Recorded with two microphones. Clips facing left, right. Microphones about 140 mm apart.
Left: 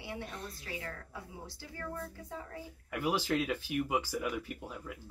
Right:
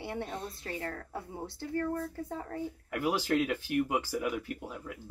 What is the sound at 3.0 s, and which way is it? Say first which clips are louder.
Speech: right 2 dB; 10° right (ahead or behind).